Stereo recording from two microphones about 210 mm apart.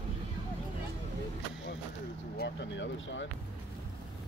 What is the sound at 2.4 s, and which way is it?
Speech, 60° left (ahead or behind).